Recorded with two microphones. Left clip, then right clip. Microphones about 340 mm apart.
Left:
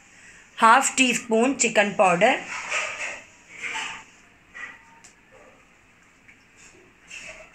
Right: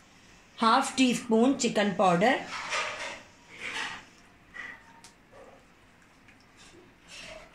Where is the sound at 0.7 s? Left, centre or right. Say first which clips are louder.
Left 6 dB; left.